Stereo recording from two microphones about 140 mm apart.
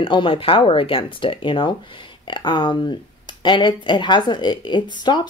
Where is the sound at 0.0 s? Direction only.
35° left (ahead or behind).